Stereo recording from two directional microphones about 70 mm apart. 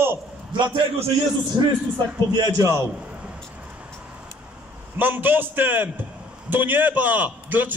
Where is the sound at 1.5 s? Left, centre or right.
Right.